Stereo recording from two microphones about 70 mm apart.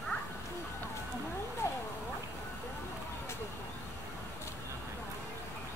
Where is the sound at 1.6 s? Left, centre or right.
Left.